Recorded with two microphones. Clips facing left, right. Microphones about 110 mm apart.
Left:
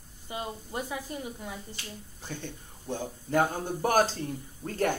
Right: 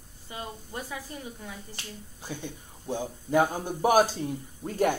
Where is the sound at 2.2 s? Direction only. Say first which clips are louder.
Right 2 dB; 15° right (ahead or behind).